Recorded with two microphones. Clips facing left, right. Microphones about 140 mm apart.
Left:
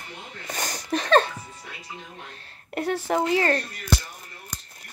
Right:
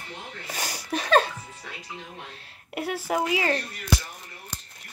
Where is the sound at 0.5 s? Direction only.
5° right (ahead or behind).